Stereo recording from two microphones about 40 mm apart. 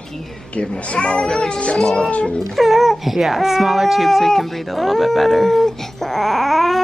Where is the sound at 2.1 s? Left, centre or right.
Left.